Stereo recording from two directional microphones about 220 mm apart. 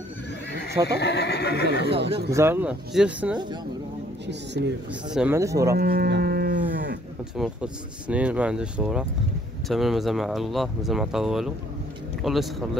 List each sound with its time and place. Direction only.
0.8 s speech: 50° left (ahead or behind)
2.3 s speech: 10° right (ahead or behind)
4.3 s speech: 50° right (ahead or behind)
5.1 s speech: 10° right (ahead or behind)
5.8 s livestock: 45° right (ahead or behind)
7.3 s speech: 5° right (ahead or behind)